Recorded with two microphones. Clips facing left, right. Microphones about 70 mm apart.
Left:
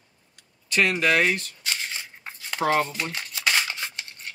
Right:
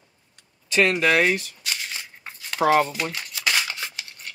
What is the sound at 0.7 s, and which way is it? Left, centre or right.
Speech, centre.